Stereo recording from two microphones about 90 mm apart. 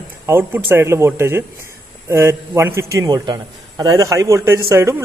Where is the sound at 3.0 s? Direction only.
50° right (ahead or behind).